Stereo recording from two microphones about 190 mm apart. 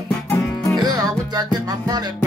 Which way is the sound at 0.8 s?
20° right (ahead or behind).